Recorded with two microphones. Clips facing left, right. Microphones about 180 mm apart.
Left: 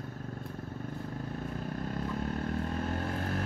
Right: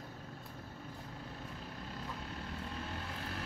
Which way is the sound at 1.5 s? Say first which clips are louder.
Left 10 dB; 50° left (ahead or behind).